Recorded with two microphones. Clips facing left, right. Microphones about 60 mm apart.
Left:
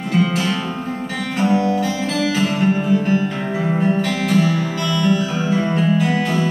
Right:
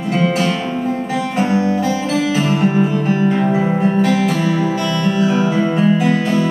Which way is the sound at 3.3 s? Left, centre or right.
Right.